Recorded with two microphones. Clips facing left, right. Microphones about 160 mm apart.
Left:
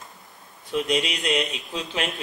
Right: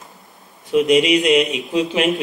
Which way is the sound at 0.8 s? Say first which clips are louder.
Right 11 dB; 75° right (ahead or behind).